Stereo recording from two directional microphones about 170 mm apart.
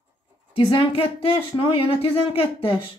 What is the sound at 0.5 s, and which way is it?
Speech, 30° left (ahead or behind).